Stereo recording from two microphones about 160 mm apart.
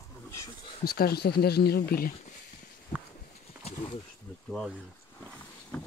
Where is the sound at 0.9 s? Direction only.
75° left (ahead or behind).